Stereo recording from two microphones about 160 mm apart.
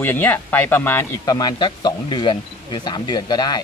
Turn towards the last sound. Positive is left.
turn(degrees=25)  # may be behind; listen again after turning